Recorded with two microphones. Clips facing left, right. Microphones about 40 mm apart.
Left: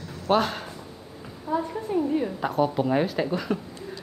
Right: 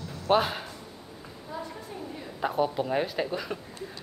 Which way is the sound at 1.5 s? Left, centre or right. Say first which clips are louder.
Left 13 dB; left.